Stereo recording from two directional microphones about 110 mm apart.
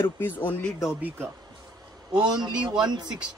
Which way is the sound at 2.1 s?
40° right (ahead or behind).